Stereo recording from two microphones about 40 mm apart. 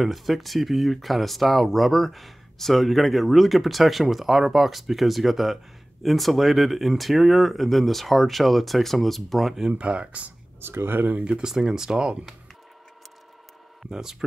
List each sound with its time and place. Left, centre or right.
0.0 s speech: centre
9.7 s speech: right
10.6 s speech: right
11.4 s speech: centre
13.8 s speech: centre